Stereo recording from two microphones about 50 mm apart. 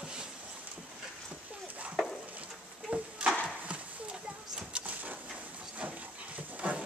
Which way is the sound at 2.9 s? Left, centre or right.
Right.